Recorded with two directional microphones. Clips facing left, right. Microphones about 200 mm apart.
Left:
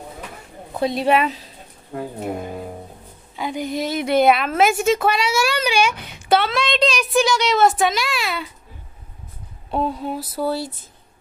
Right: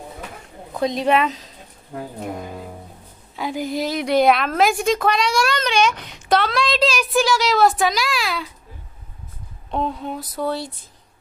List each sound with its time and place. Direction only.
0.7 s a woman's voice: 5° left (ahead or behind)
3.3 s a woman's voice: centre (ahead or behind)
9.7 s a woman's voice: 5° left (ahead or behind)